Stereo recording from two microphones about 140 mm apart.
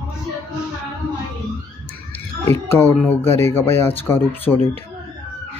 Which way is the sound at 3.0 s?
20° left (ahead or behind).